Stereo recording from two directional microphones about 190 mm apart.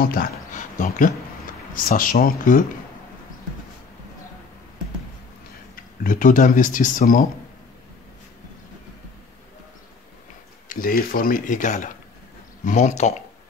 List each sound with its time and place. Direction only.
0.0 s a sound: 50° left (ahead or behind)
1.7 s speech: 45° left (ahead or behind)
5.8 s speech: 45° left (ahead or behind)
10.7 s speech: 50° left (ahead or behind)